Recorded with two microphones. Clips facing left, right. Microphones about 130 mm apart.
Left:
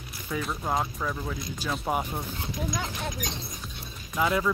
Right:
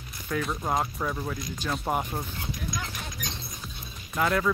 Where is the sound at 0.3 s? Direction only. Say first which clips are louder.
Right 1 dB; centre (ahead or behind).